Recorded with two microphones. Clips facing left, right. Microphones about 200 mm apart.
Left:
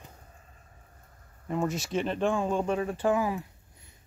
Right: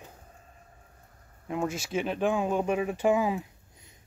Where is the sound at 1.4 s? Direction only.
Centre (ahead or behind).